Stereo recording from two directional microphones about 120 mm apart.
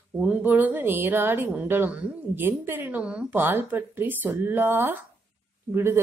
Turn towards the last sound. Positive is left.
turn(degrees=-20)  # may be behind; listen again after turning